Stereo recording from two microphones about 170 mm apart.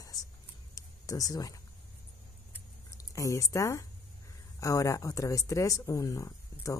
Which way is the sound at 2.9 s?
20° left (ahead or behind).